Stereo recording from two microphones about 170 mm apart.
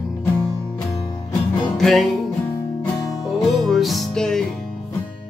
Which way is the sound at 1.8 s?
Centre (ahead or behind).